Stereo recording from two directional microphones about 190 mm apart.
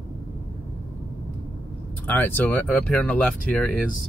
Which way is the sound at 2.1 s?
10° left (ahead or behind).